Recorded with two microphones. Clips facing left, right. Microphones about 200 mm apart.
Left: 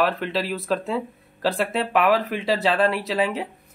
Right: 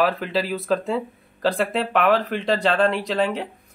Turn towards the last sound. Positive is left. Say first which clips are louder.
# right 1 dB
turn(degrees=5)  # may be behind; listen again after turning